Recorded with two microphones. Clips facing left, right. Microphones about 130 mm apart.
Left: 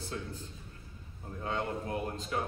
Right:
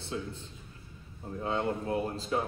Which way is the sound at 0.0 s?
25° right (ahead or behind).